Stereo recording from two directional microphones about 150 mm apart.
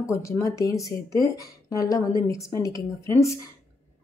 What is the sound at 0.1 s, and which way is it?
Speech, 20° left (ahead or behind).